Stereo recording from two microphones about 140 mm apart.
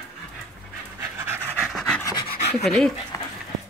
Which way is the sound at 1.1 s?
15° right (ahead or behind).